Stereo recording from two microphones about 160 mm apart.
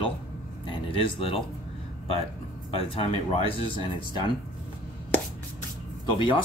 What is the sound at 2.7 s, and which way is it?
Speech, 35° left (ahead or behind).